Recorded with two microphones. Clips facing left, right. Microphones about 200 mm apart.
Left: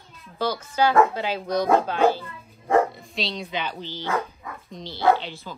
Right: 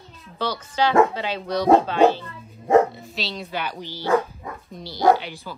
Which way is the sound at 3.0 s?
Centre (ahead or behind).